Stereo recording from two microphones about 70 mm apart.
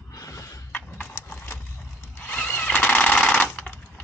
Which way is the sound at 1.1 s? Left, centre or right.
Left.